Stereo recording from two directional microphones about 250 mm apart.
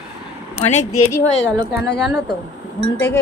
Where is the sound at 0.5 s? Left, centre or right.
Left.